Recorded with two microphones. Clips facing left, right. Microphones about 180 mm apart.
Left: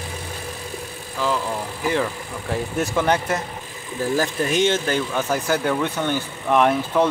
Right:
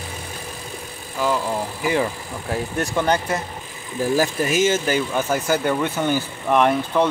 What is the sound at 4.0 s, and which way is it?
Speech, 10° right (ahead or behind).